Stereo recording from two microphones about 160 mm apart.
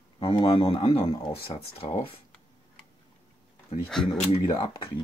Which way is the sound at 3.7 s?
40° left (ahead or behind).